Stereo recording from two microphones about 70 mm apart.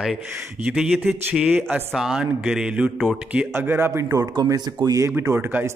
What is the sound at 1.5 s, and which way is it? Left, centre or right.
Speech, right.